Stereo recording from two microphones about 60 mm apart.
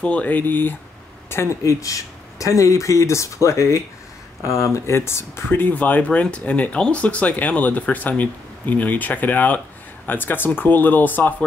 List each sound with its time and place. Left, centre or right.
0.0 s speech: left
1.3 s speech: left
1.6 s speech: left